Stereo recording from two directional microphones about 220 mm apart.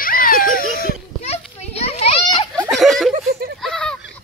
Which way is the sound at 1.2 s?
30° left (ahead or behind).